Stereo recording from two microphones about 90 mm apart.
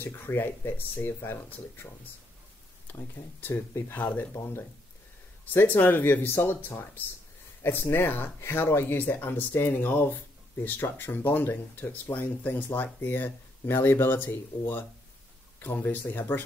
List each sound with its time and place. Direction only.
0.0 s speech: 25° left (ahead or behind)
2.9 s speech: 20° left (ahead or behind)